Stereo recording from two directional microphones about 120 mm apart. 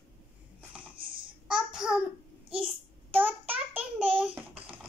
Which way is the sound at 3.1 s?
15° right (ahead or behind).